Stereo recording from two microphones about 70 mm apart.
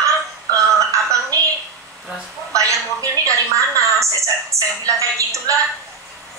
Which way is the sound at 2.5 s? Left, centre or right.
Right.